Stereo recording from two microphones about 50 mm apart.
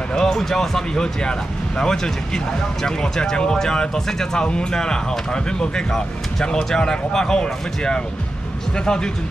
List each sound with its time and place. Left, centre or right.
0.1 s speech: centre